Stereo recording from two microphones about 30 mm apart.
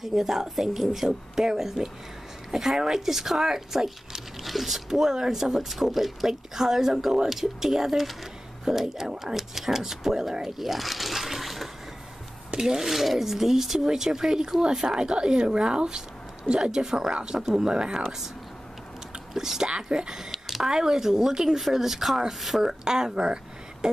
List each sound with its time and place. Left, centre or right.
0.0 s speech: centre
4.8 s speech: centre
8.6 s speech: centre
12.5 s speech: centre
15.0 s speech: right
17.4 s speech: centre
17.7 s speech: right
19.3 s speech: centre
19.7 s speech: right
20.1 s a sound: centre
20.7 s speech: centre
22.7 s speech: centre
23.1 s a sound: right